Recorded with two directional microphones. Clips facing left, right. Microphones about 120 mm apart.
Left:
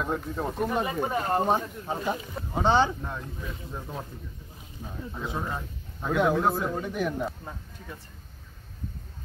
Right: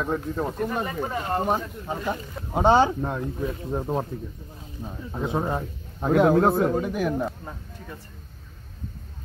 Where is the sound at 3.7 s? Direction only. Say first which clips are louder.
Right 12 dB; 45° right (ahead or behind).